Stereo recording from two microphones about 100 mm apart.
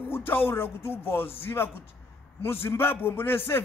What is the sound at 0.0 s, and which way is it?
A man's voice, 20° left (ahead or behind).